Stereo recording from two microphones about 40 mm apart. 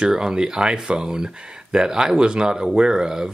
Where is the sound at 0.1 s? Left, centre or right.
Centre.